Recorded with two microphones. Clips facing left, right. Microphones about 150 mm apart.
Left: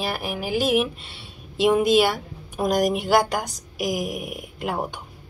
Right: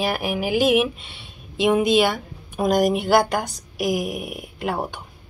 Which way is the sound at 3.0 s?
10° left (ahead or behind).